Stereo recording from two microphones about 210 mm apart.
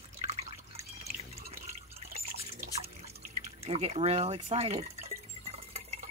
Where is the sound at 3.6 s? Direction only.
30° right (ahead or behind).